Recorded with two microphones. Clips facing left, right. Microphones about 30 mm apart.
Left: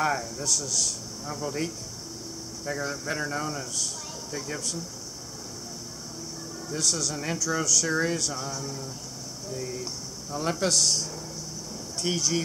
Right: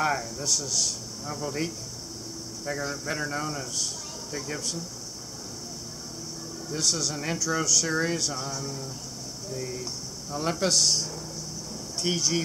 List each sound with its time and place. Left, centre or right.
0.0 s a man's voice: centre
6.7 s a man's voice: centre